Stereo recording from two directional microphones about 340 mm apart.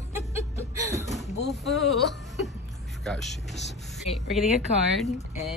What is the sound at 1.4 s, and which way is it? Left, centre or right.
Speech, centre.